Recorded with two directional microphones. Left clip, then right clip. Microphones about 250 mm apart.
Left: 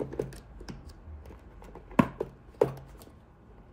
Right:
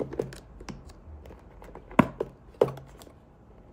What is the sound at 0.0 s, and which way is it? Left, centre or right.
Computer keyboard, centre.